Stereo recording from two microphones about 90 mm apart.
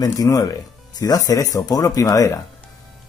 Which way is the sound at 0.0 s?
45° left (ahead or behind).